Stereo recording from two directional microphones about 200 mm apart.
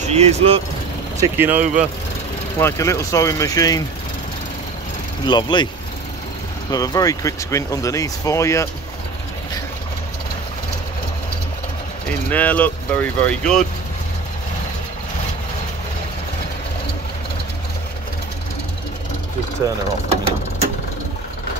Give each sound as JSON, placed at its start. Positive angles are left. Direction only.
{"t": 0.1, "sound": "speech", "side_deg": -30}
{"t": 1.2, "sound": "speech", "side_deg": -10}
{"t": 1.6, "sound": "speech", "side_deg": -40}
{"t": 2.6, "sound": "speech", "side_deg": 15}
{"t": 5.2, "sound": "speech", "side_deg": 20}
{"t": 6.7, "sound": "speech", "side_deg": 20}
{"t": 12.1, "sound": "speech", "side_deg": 10}